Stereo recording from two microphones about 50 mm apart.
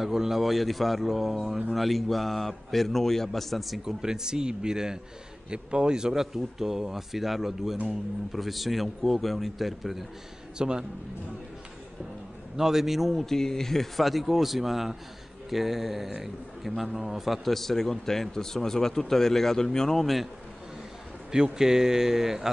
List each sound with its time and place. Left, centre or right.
0.0 s a man's voice: centre
3.8 s a man's voice: centre
10.6 s speech: centre
12.5 s a man's voice: centre
21.5 s speech: centre